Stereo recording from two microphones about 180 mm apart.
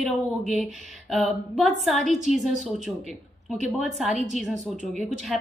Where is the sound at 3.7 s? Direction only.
Centre (ahead or behind).